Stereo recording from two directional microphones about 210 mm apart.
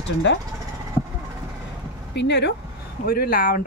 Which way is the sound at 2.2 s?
55° left (ahead or behind).